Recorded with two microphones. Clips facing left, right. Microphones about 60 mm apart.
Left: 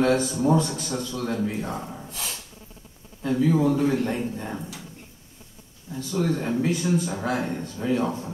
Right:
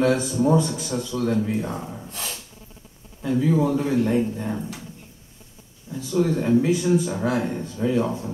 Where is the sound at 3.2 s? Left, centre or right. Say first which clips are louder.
Even; centre.